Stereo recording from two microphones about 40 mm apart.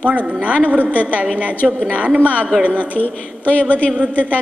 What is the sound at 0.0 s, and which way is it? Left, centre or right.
A woman's voice, right.